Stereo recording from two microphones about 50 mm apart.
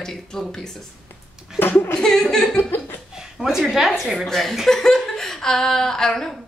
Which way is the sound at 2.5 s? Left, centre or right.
Left.